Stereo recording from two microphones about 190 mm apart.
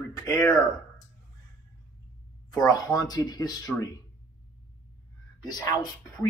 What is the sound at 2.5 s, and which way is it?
Speech, 20° left (ahead or behind).